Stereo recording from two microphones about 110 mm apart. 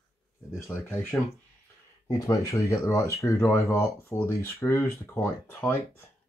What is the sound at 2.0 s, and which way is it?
Speech, 30° left (ahead or behind).